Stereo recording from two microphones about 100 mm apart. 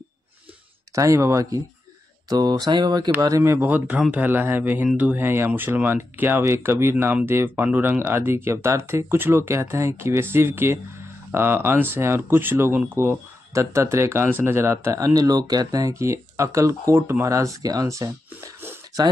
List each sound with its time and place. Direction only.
0.9 s speech: 30° right (ahead or behind)
3.1 s speech: 30° right (ahead or behind)